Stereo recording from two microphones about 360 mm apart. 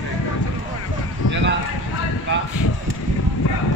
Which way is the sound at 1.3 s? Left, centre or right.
Right.